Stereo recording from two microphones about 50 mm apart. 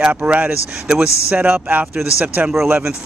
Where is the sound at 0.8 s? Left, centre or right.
Centre.